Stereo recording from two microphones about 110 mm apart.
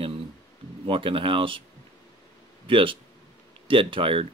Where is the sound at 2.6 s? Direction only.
50° right (ahead or behind).